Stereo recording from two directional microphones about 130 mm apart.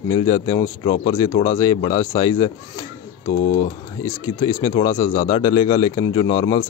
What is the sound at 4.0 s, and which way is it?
A man's voice, 25° left (ahead or behind).